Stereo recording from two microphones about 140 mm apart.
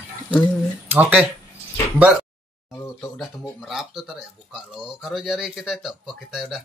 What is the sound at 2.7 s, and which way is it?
Speech, 20° left (ahead or behind).